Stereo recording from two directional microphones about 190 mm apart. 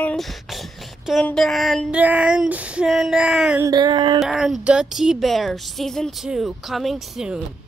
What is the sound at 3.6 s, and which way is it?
Speech, 20° right (ahead or behind).